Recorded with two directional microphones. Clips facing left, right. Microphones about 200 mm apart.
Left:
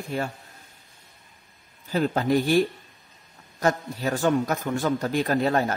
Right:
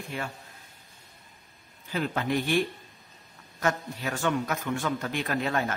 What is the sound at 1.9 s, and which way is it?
A man's voice, 40° left (ahead or behind).